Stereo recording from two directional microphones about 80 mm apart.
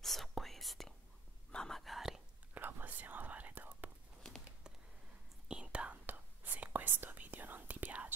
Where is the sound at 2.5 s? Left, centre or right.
Right.